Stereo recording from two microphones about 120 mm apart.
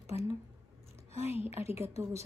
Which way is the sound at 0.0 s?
25° right (ahead or behind).